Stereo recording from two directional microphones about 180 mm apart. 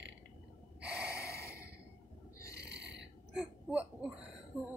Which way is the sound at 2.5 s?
70° right (ahead or behind).